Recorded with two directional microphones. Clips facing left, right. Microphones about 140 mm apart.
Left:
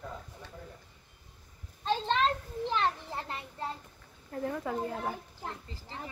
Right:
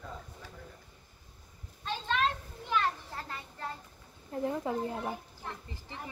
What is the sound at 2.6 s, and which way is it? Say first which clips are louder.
Children playing: left 1 dB; 25° left (ahead or behind).